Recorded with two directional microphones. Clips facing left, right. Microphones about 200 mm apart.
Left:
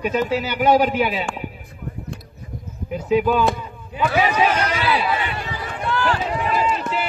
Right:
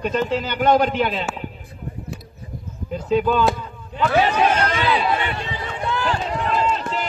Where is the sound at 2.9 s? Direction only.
10° left (ahead or behind).